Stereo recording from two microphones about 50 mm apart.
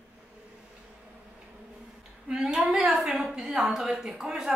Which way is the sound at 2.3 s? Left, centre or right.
Centre.